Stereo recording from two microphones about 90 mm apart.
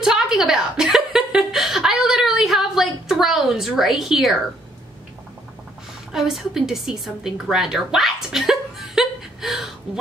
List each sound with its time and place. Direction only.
0.0 s chuckle: 5° right (ahead or behind)
6.1 s a woman's voice: 5° right (ahead or behind)